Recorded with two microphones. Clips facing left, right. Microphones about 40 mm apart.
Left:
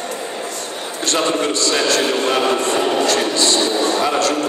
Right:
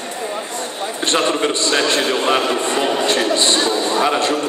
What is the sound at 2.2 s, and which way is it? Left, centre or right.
Speech, centre.